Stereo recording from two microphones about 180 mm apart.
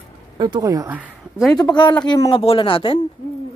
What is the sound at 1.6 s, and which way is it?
Speech, 25° left (ahead or behind).